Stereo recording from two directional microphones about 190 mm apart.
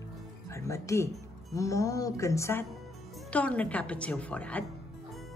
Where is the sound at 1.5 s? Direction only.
15° left (ahead or behind).